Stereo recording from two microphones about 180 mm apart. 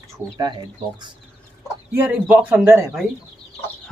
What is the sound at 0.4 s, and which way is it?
Speech, 25° right (ahead or behind).